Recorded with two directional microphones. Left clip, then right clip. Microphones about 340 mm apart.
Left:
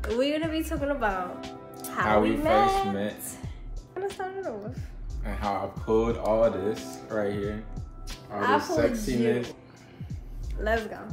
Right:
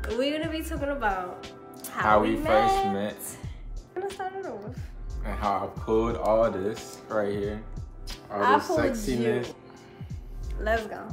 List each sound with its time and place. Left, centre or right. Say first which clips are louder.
0.0 s a woman's voice: left 1 dB; centre
6.7 s a woman's voice: left 2 dB; centre
7.2 s speech: right 1 dB; centre
10.6 s a woman's voice: even; centre